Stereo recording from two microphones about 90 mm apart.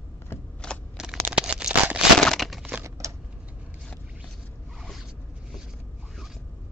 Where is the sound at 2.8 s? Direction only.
35° right (ahead or behind).